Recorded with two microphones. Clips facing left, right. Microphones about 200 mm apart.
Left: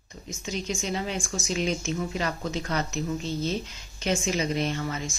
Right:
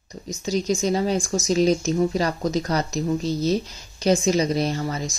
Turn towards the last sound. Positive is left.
turn(degrees=-35)  # may be behind; listen again after turning